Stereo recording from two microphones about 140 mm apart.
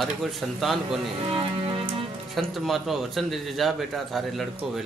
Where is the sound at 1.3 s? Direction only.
40° right (ahead or behind).